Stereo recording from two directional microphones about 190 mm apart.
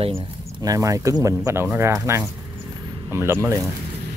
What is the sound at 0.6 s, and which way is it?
Speech, 20° right (ahead or behind).